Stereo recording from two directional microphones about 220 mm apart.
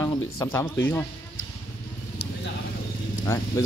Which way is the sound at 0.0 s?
15° left (ahead or behind).